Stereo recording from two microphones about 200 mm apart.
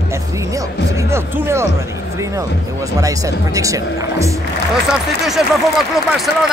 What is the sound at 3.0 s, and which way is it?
Speech, 15° right (ahead or behind).